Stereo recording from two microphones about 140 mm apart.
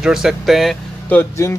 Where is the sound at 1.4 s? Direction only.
25° left (ahead or behind).